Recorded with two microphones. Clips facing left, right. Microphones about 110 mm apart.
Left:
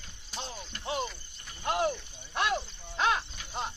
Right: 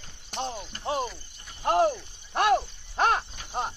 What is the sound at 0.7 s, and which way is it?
Cricket, 35° right (ahead or behind).